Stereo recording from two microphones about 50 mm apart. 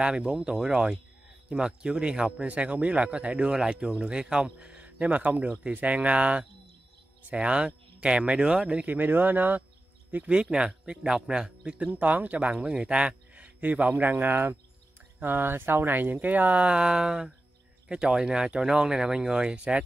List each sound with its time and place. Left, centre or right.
0.0 s speech: centre; by 9.6 s right
10.1 s speech: right
11.8 s speech: right
14.1 s speech: right
16.6 s speech: centre